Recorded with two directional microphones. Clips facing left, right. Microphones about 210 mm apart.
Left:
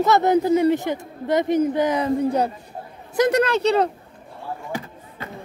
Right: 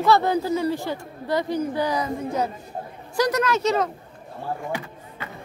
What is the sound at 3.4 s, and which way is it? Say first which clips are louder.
Speech: left 3 dB; 30° left (ahead or behind).